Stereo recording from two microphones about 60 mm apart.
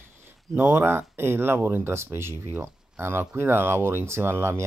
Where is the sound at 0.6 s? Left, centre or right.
Right.